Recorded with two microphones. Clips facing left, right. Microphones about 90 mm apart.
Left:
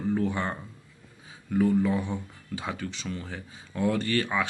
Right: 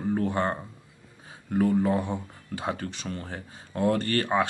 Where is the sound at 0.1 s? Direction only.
40° right (ahead or behind).